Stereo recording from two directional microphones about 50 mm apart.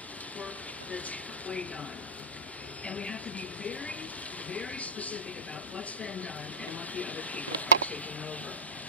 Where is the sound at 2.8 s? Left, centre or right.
Centre.